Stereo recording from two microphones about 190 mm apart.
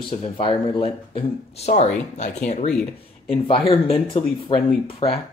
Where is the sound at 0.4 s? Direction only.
30° left (ahead or behind).